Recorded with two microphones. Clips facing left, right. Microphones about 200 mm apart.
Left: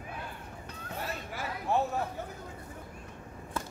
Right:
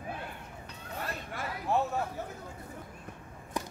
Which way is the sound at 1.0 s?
Centre (ahead or behind).